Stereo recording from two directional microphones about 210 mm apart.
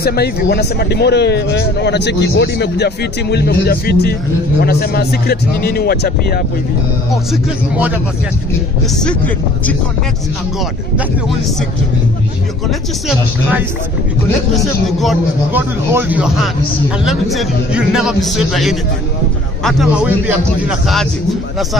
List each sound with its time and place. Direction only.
0.0 s speech: 50° left (ahead or behind)
9.0 s speech: 5° left (ahead or behind)
12.6 s a man's voice: 5° right (ahead or behind)
14.9 s a man's voice: centre (ahead or behind)